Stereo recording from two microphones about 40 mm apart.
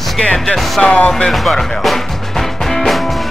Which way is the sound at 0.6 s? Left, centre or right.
Centre.